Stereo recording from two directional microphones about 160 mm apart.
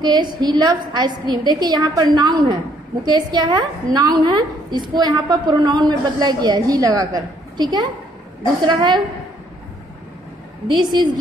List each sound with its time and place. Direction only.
0.0 s a woman's voice: 25° right (ahead or behind)
10.7 s a woman's voice: 25° right (ahead or behind)